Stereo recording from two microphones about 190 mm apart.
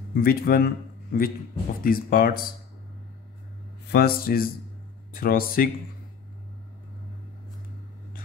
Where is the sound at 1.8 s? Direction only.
50° left (ahead or behind).